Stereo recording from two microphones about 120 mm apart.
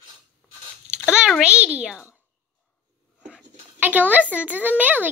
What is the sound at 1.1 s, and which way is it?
A woman's voice, 5° right (ahead or behind).